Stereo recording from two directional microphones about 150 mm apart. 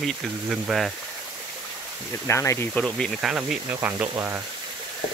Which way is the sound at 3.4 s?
15° right (ahead or behind).